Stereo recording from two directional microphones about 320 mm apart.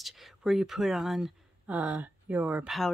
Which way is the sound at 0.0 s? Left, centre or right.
Centre.